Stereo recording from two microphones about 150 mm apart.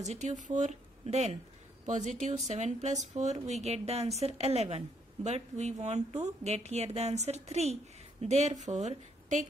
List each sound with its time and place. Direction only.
0.0 s a woman's voice: 50° right (ahead or behind)